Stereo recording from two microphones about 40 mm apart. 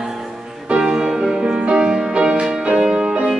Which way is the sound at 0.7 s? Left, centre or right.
Right.